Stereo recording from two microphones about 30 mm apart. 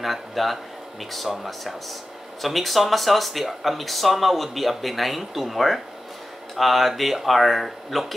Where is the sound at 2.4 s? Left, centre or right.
Centre.